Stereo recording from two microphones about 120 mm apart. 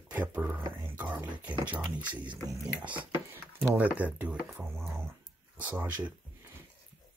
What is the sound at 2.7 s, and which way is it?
Speech, 10° right (ahead or behind).